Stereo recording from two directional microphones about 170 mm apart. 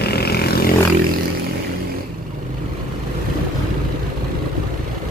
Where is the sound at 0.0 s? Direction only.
70° left (ahead or behind).